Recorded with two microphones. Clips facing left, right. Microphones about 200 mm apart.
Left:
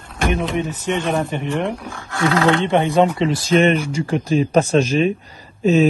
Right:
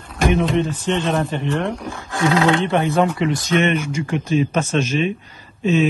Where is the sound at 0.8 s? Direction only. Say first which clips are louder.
Even; 15° left (ahead or behind).